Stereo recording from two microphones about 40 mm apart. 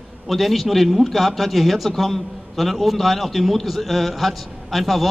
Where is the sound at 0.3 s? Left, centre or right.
Centre.